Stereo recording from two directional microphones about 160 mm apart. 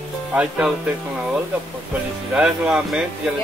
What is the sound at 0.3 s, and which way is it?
Speech, 5° right (ahead or behind).